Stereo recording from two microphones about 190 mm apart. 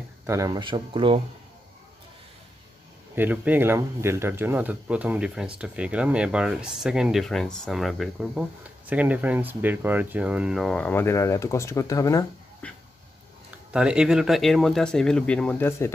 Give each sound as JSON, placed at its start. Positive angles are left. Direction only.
{"t": 0.3, "sound": "speech", "side_deg": -20}
{"t": 3.2, "sound": "speech", "side_deg": -10}
{"t": 12.6, "sound": "dog", "side_deg": 5}
{"t": 13.7, "sound": "speech", "side_deg": -5}